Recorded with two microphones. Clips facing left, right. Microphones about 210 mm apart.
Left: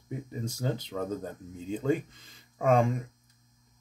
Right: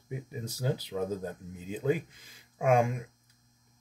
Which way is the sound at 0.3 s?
5° right (ahead or behind).